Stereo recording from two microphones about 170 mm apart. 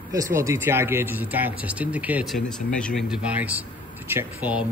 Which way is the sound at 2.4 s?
5° left (ahead or behind).